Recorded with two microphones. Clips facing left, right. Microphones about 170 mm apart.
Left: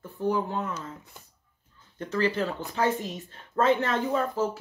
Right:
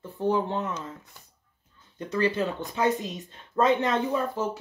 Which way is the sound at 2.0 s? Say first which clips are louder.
Right 1 dB; 20° right (ahead or behind).